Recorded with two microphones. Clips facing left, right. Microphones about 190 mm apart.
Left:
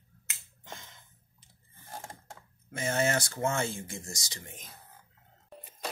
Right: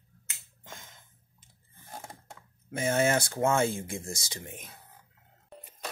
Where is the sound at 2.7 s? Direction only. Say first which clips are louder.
Right 3 dB; 55° right (ahead or behind).